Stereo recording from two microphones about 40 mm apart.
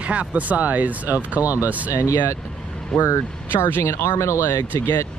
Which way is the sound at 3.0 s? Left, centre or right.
Left.